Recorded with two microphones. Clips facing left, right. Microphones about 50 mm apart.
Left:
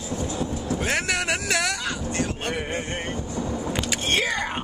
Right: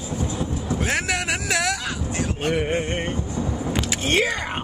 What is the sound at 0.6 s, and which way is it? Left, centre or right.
Vehicle, centre.